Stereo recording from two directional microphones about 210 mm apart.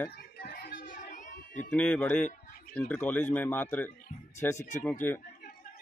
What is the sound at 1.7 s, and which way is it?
A man's voice, 5° left (ahead or behind).